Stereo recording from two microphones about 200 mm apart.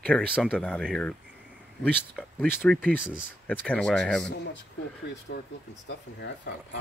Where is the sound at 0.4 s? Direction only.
5° left (ahead or behind).